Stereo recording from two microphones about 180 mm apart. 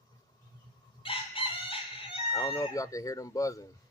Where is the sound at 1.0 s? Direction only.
30° left (ahead or behind).